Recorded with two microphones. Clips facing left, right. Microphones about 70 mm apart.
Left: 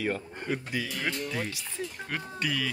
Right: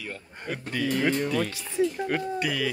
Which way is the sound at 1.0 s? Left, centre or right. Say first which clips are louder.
Right 10 dB; right.